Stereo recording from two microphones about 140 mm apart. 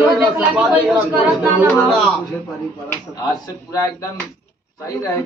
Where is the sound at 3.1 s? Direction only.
25° left (ahead or behind).